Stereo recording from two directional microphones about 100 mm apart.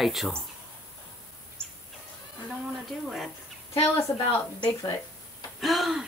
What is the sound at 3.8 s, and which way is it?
Speech, 30° left (ahead or behind).